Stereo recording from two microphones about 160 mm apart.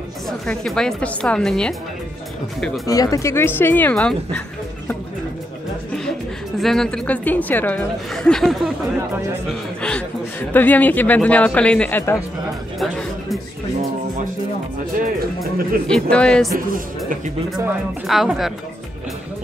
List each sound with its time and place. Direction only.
0.5 s a woman's voice: 5° left (ahead or behind)
2.9 s speech: 20° left (ahead or behind); by 4.4 s 5° left (ahead or behind)
6.6 s a woman's voice: 5° left (ahead or behind)
12.7 s music: centre (ahead or behind)
15.0 s speech: 70° right (ahead or behind)
15.9 s a woman's voice: 5° left (ahead or behind)
16.5 s speech: 60° right (ahead or behind)
18.0 s a woman's voice: centre (ahead or behind)